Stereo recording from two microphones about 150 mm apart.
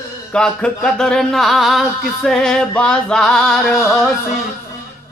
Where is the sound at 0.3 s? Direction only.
5° left (ahead or behind).